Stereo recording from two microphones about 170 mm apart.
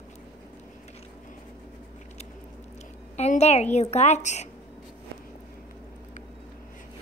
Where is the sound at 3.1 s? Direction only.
40° left (ahead or behind).